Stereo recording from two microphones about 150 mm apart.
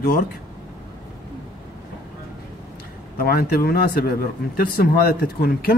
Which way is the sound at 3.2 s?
90° left.